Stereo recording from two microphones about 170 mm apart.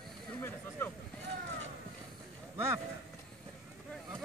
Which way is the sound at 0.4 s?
15° left (ahead or behind).